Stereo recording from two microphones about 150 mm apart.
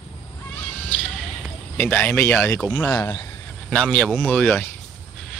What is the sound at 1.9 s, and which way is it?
Speech, 5° left (ahead or behind).